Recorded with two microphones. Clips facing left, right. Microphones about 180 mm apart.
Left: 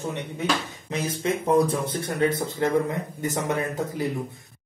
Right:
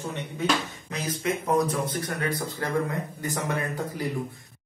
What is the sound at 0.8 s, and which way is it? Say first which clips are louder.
Speech: left 4 dB; 30° left (ahead or behind).